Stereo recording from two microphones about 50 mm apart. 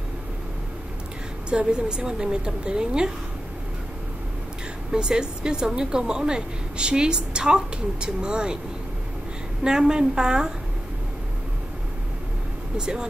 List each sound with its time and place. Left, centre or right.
1.5 s a woman's voice: centre
4.9 s a woman's voice: centre
9.6 s a woman's voice: centre
12.7 s a woman's voice: centre